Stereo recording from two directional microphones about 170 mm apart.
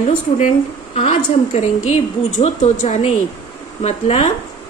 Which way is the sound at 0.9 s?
40° left (ahead or behind).